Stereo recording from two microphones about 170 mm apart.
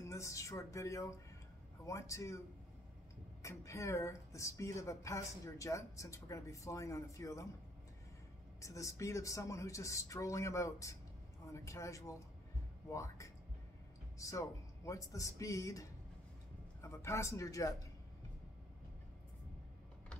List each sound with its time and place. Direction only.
0.0 s speech: 20° left (ahead or behind)
3.4 s speech: 15° left (ahead or behind)
8.5 s speech: 20° left (ahead or behind)